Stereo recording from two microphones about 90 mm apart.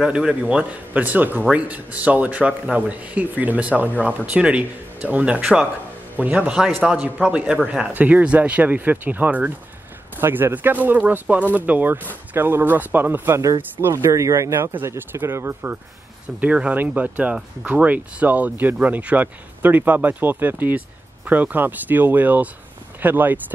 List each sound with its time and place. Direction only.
0.0 s speech: 10° right (ahead or behind); by 15.8 s 25° right (ahead or behind)
16.3 s speech: 15° right (ahead or behind)